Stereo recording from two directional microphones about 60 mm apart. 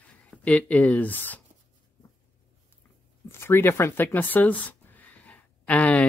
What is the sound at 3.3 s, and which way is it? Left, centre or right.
Speech, left.